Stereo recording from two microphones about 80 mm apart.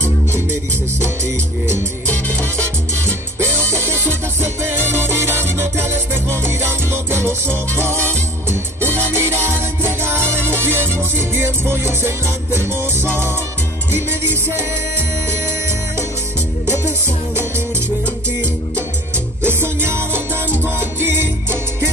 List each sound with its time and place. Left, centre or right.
0.0 s music: right
2.0 s salsa music: centre
3.3 s music: right
9.1 s music: right
16.6 s music: right
19.4 s music: right